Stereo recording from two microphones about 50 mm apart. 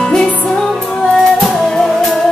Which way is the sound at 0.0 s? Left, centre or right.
Centre.